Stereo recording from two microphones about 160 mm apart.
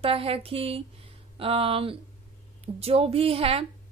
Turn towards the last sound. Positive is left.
turn(degrees=-35)  # may be behind; listen again after turning